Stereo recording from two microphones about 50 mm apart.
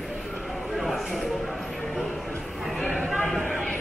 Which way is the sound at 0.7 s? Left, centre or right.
Centre.